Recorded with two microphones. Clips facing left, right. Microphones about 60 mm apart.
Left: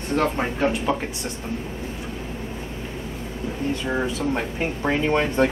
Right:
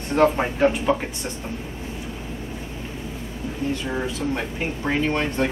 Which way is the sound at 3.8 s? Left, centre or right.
Centre.